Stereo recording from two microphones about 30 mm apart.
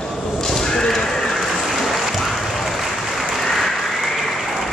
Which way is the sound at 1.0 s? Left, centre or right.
Centre.